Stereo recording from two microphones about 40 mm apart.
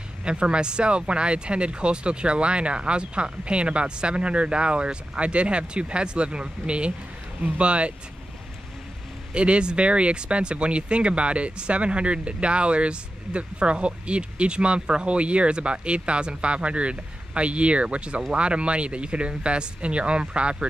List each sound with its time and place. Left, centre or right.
0.2 s speech: right
9.3 s speech: right